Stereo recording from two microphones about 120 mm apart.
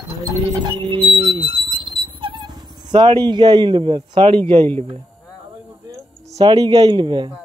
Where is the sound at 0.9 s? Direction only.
50° right (ahead or behind).